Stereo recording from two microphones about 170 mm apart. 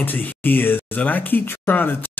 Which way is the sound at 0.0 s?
10° left (ahead or behind).